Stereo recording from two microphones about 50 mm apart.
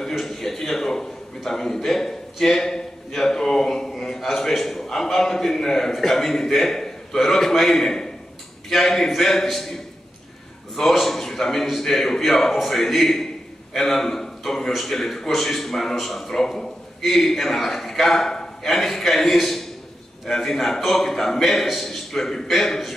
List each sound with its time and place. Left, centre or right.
0.2 s a sound: centre
8.6 s a man's voice: centre
10.8 s a man's voice: centre